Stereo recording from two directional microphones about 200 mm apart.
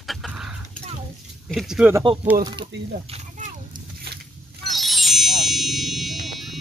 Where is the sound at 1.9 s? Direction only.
25° right (ahead or behind).